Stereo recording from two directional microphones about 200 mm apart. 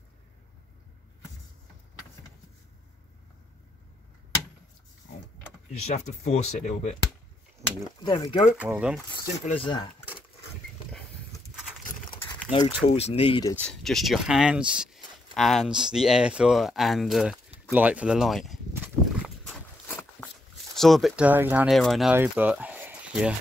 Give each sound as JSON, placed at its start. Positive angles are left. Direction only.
{"t": 5.7, "sound": "speech", "side_deg": 35}
{"t": 8.0, "sound": "speech", "side_deg": 25}
{"t": 8.5, "sound": "speech", "side_deg": -5}
{"t": 9.4, "sound": "speech", "side_deg": 25}
{"t": 12.4, "sound": "speech", "side_deg": 30}
{"t": 13.6, "sound": "speech", "side_deg": 0}
{"t": 19.9, "sound": "a sound", "side_deg": 10}
{"t": 20.7, "sound": "speech", "side_deg": 0}